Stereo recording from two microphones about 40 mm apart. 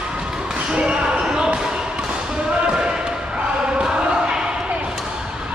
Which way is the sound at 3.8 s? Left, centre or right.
Centre.